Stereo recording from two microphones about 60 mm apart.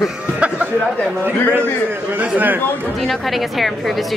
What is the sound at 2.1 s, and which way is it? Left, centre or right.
Speech, right.